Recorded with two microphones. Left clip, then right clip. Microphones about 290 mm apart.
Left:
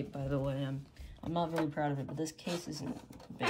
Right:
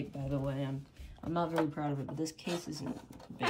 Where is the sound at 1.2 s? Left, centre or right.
Centre.